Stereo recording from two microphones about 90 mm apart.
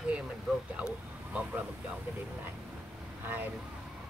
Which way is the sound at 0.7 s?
15° right (ahead or behind).